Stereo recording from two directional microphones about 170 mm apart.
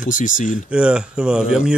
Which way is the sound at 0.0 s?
50° left (ahead or behind).